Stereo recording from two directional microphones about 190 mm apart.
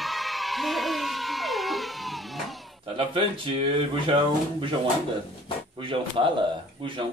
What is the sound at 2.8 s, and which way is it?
Speech, 25° right (ahead or behind).